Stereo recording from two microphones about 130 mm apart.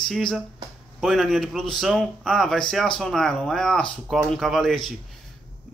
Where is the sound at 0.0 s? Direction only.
5° left (ahead or behind).